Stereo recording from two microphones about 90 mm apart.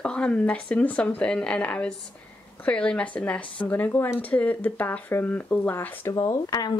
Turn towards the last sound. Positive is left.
turn(degrees=45)  # may be behind; listen again after turning